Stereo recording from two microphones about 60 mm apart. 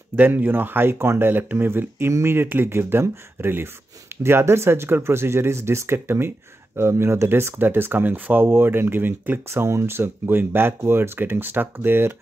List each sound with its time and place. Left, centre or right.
0.1 s speech: right
9.5 s speech: right